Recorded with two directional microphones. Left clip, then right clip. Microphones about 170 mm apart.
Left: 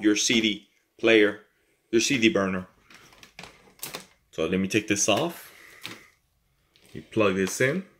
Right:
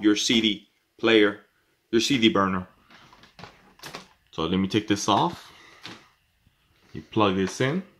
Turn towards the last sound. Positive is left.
turn(degrees=-60)  # may be behind; listen again after turning